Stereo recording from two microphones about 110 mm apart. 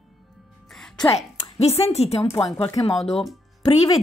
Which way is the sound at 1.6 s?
75° left (ahead or behind).